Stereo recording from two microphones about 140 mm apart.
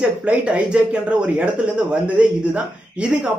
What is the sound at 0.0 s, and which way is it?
Speech, 10° right (ahead or behind).